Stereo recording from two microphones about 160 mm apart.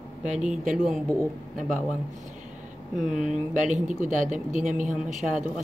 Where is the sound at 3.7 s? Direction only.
50° right (ahead or behind).